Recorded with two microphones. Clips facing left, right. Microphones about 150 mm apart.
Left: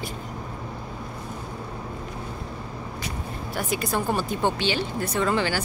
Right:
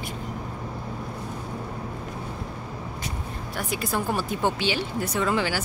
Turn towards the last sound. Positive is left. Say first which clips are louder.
# left 1 dB
turn(degrees=-5)  # may be behind; listen again after turning